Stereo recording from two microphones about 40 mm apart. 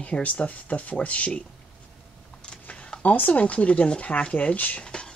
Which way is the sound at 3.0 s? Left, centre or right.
Left.